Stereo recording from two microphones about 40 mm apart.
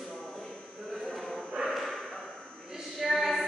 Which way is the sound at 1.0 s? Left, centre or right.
Centre.